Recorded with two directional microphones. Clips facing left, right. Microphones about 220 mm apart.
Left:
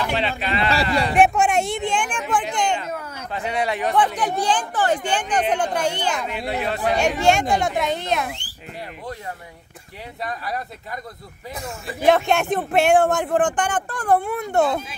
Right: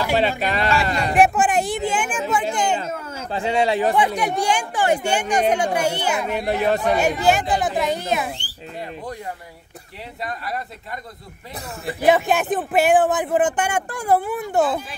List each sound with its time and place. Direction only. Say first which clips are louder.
0.1 s speech: right 4 dB; 40° right (ahead or behind)
1.1 s speech: right 1 dB; centre (ahead or behind)
2.8 s speech: right 2 dB; 25° right (ahead or behind)
3.9 s speech: right 1 dB; 10° right (ahead or behind)
6.2 s speech: right 5 dB; 45° right (ahead or behind)
7.0 s speech: even; centre (ahead or behind)
10.2 s speech: even; centre (ahead or behind)
12.1 s speech: even; centre (ahead or behind)